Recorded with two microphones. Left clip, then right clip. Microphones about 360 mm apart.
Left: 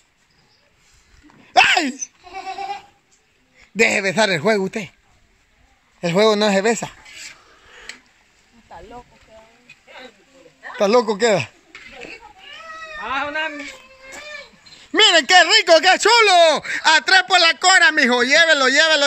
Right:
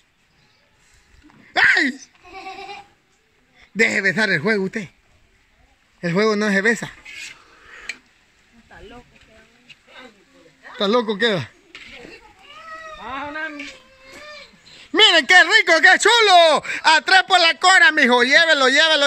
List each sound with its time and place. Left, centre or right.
1.2 s a sound: centre
3.5 s a man's voice: centre
5.9 s speech: centre
10.8 s a man's voice: centre
13.0 s cat: left
14.9 s speech: centre